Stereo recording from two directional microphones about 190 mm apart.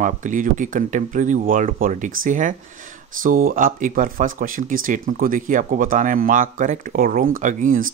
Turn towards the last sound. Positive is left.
turn(degrees=-40)  # may be behind; listen again after turning